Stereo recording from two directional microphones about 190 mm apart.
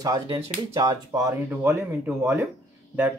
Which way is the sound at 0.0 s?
20° right (ahead or behind).